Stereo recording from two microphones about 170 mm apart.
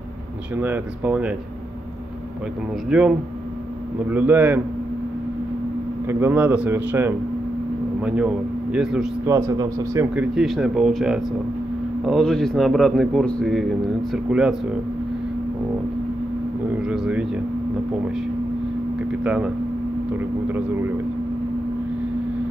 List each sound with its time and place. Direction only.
0.6 s a man's voice: 10° right (ahead or behind)
2.9 s a man's voice: 5° right (ahead or behind)
6.0 s a man's voice: 10° right (ahead or behind)
9.3 s a man's voice: 20° right (ahead or behind)
10.1 s a man's voice: 5° right (ahead or behind)
16.8 s a man's voice: 5° right (ahead or behind)
19.2 s a man's voice: 5° right (ahead or behind)